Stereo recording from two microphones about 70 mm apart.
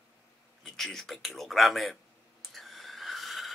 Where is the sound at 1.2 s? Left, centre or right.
Centre.